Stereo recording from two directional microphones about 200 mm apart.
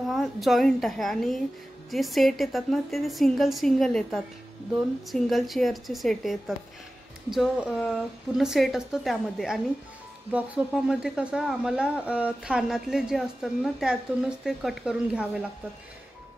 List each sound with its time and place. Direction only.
0.1 s speech: centre (ahead or behind)